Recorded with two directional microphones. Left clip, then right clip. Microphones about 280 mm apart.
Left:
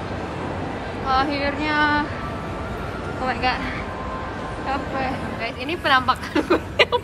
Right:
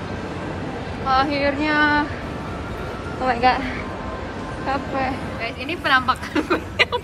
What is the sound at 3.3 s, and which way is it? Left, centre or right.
A woman's voice, centre.